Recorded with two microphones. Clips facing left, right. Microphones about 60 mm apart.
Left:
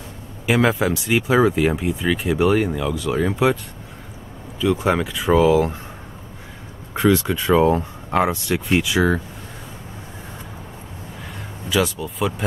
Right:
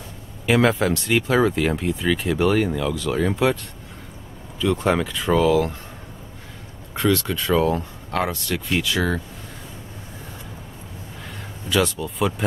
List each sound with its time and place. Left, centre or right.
0.5 s speech: centre
4.6 s speech: centre
6.9 s speech: centre
11.7 s speech: centre